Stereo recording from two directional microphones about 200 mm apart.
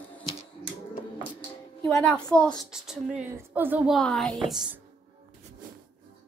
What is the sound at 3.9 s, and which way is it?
Speech, 5° left (ahead or behind).